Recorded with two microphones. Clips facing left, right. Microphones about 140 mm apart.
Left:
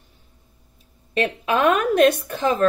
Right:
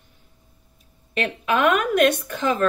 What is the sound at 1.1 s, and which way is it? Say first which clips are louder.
A woman's voice: left 2 dB; 35° left (ahead or behind).